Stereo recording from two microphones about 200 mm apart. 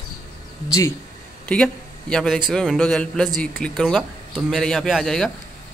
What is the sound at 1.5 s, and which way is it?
Speech, 5° left (ahead or behind).